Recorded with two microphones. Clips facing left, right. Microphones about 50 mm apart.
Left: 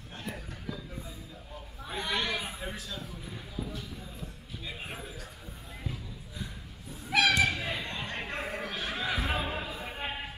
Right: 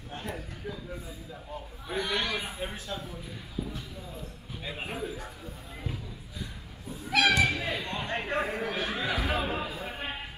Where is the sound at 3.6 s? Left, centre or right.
Right.